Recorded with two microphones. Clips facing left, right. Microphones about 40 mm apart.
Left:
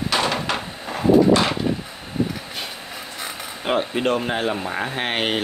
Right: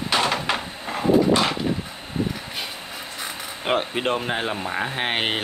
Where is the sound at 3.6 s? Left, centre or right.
Centre.